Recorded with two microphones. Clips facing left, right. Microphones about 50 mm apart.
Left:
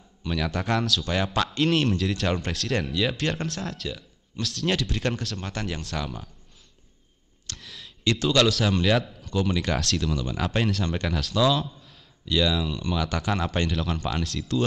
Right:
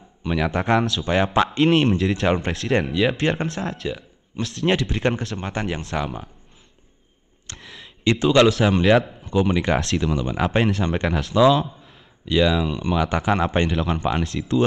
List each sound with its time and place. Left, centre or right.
0.2 s speech: centre
7.6 s speech: centre
12.3 s speech: right